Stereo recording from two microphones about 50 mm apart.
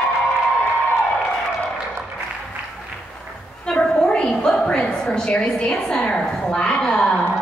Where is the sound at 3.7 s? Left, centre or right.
Centre.